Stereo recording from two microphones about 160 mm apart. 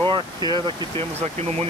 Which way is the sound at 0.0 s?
30° right (ahead or behind).